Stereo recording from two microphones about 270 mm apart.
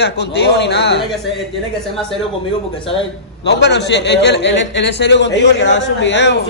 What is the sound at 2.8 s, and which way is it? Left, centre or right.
Speech, centre.